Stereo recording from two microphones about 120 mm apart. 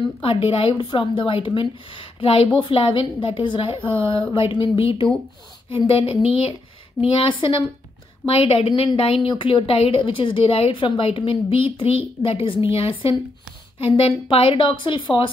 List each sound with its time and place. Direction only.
0.2 s a woman's voice: 55° left (ahead or behind)